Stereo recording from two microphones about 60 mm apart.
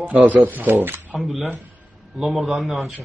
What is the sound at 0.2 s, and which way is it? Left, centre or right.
Speech, right.